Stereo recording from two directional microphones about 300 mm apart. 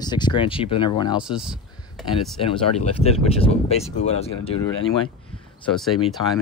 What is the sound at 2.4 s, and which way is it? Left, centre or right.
Speech, centre.